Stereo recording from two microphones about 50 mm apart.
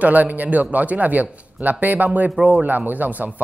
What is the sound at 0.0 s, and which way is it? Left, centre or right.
Speech, right.